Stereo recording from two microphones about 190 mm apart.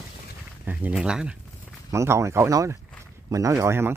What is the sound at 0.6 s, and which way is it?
Speech, 10° right (ahead or behind).